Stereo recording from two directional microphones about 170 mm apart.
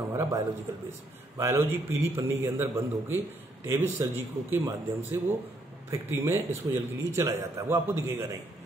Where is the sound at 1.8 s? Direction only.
15° right (ahead or behind).